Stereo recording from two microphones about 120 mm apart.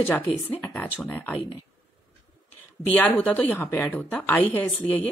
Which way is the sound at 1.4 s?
45° left (ahead or behind).